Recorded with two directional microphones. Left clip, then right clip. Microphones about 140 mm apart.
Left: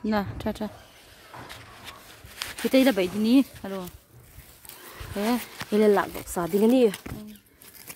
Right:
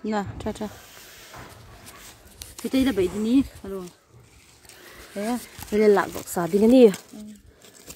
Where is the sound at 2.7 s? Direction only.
55° left (ahead or behind).